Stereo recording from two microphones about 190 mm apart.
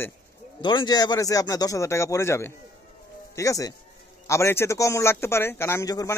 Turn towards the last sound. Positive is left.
turn(degrees=15)  # may be behind; listen again after turning